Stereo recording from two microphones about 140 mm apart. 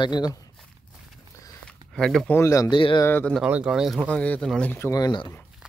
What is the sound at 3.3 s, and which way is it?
Speech, 10° right (ahead or behind).